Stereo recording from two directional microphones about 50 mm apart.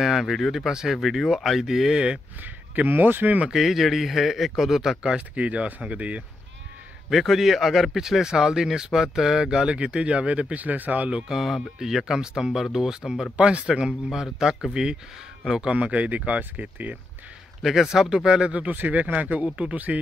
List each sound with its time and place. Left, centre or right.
0.0 s speech: centre
0.9 s speech: centre
2.4 s speech: right
3.4 s speech: centre
5.1 s speech: right
7.1 s speech: centre; by 11.1 s right
11.1 s speech: centre
13.4 s speech: right
15.7 s speech: right
17.6 s speech: centre
18.5 s speech: right